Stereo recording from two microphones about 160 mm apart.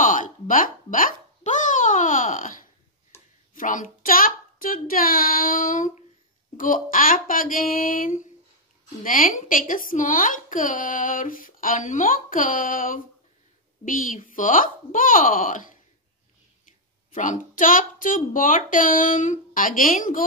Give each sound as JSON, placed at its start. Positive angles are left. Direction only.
{"t": 0.0, "sound": "a child's voice", "side_deg": 55}
{"t": 17.1, "sound": "speech", "side_deg": 55}